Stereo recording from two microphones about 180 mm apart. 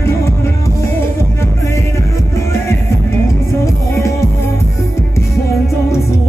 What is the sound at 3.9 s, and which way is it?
Music, 15° left (ahead or behind).